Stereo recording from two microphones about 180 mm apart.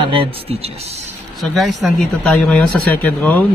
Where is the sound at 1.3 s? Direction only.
Centre (ahead or behind).